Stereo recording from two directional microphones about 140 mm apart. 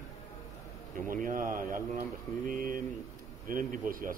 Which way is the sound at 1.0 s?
85° right.